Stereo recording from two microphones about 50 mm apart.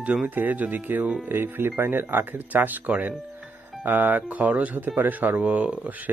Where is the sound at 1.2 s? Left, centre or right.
Right.